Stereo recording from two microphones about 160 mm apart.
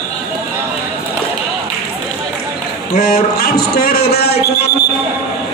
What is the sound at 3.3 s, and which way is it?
A man's voice, 70° left (ahead or behind).